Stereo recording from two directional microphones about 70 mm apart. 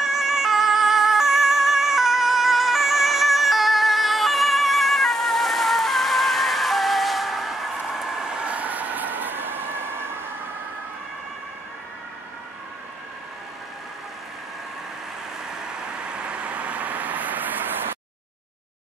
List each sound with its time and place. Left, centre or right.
0.0 s music: centre; by 10.0 s right
15.7 s vehicle: centre